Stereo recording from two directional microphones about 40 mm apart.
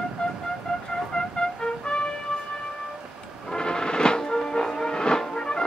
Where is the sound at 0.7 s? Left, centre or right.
Centre.